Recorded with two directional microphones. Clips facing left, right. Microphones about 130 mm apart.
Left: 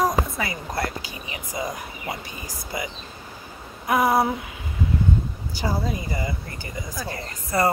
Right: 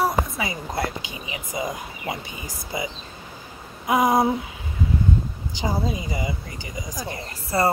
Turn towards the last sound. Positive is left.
turn(degrees=-25)  # may be behind; listen again after turning